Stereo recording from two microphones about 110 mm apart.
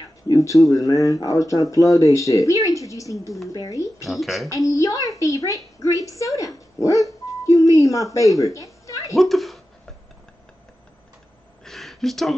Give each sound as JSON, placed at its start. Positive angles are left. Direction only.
{"t": 0.3, "sound": "a woman's voice", "side_deg": 30}
{"t": 4.0, "sound": "speech", "side_deg": 0}
{"t": 4.5, "sound": "a woman's voice", "side_deg": 30}
{"t": 5.9, "sound": "dog", "side_deg": 30}
{"t": 8.8, "sound": "a sound", "side_deg": 30}
{"t": 9.1, "sound": "speech", "side_deg": 0}
{"t": 11.6, "sound": "a sound", "side_deg": 0}